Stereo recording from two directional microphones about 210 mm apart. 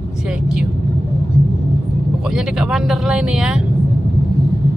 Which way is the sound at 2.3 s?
5° right (ahead or behind).